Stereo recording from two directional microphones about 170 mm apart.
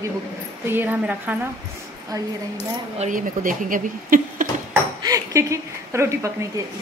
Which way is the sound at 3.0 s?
50° right (ahead or behind).